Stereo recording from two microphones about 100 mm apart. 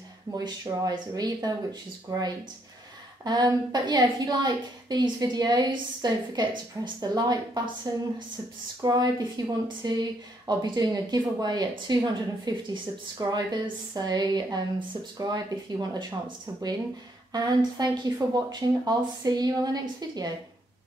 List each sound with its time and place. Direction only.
0.3 s a woman's voice: 35° right (ahead or behind)
8.8 s a woman's voice: 40° right (ahead or behind)